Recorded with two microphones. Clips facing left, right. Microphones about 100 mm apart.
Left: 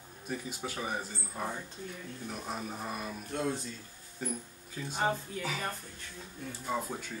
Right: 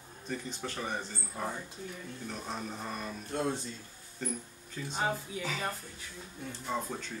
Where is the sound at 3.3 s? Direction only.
30° right (ahead or behind).